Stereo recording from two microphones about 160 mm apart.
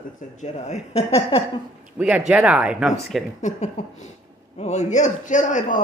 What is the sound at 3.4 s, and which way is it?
Speech, 45° left (ahead or behind).